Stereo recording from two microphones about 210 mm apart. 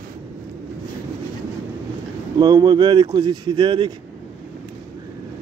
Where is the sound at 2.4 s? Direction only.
20° right (ahead or behind).